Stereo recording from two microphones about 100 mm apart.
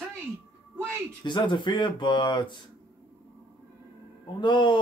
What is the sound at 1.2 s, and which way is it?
A man's voice, 50° left (ahead or behind).